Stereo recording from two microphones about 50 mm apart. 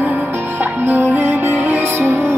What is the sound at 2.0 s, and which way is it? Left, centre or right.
Music, right.